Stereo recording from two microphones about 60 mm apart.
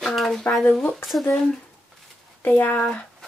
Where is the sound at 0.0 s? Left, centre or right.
Centre.